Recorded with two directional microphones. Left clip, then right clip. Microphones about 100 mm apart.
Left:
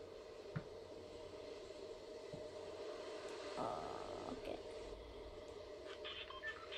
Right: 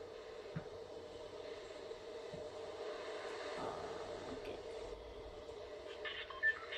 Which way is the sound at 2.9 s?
15° right (ahead or behind).